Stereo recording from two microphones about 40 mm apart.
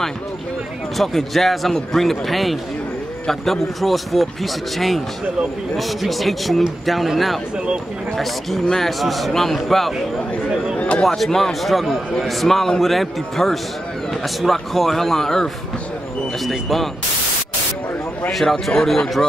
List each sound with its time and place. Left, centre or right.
0.9 s speech: centre
7.5 s speech: right
8.2 s a man's voice: centre
11.1 s a man's voice: centre
18.3 s speech: centre